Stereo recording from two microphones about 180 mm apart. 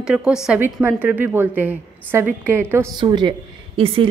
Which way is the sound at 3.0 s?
25° right (ahead or behind).